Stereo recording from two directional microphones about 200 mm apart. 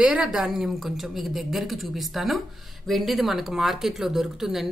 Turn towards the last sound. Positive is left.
turn(degrees=0)  # may be behind; listen again after turning